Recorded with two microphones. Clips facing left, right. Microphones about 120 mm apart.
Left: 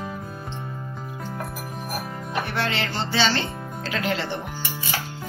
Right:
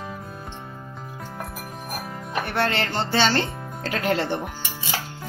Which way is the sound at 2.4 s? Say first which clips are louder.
Right 5 dB; 50° right (ahead or behind).